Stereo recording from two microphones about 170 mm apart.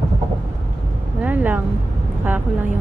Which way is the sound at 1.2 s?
10° right (ahead or behind).